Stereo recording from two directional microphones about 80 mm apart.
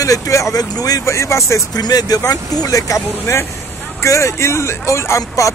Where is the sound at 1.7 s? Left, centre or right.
Left.